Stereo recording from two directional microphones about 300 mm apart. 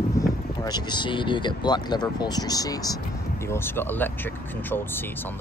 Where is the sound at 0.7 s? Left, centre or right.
Centre.